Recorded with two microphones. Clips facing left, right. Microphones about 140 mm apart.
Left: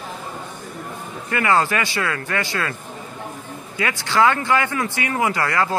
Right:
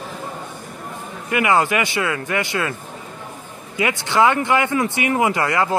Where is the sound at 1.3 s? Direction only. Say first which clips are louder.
Right 1 dB; 15° right (ahead or behind).